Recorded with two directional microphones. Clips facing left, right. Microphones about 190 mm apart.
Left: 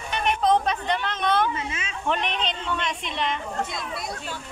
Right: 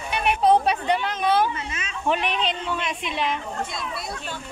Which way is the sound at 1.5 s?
25° left (ahead or behind).